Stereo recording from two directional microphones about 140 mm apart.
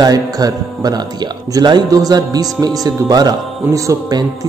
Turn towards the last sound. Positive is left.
turn(degrees=-25)  # may be behind; listen again after turning